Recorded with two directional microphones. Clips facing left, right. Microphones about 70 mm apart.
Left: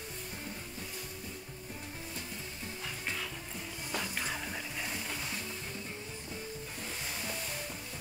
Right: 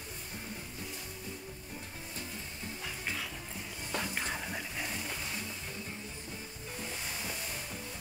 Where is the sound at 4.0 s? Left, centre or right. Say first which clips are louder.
Right 1 dB; centre.